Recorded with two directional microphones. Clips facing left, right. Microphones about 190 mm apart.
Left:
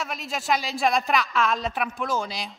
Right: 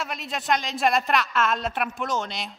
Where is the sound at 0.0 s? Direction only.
Centre (ahead or behind).